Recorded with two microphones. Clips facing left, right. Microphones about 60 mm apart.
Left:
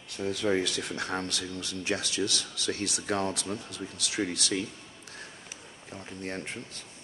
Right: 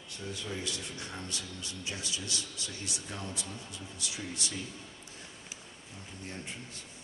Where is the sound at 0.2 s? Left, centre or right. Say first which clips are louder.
Left 11 dB; left.